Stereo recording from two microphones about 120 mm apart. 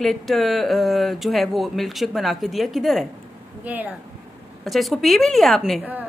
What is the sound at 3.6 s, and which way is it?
Speech, 15° right (ahead or behind).